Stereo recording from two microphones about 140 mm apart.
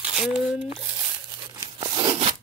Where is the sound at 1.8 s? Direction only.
35° right (ahead or behind).